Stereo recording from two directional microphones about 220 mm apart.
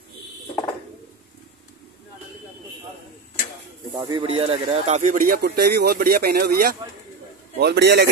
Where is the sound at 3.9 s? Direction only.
25° right (ahead or behind).